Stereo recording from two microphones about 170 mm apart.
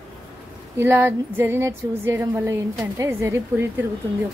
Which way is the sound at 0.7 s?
15° right (ahead or behind).